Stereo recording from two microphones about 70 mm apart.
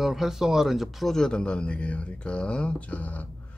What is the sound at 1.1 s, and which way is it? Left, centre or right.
Speech, centre.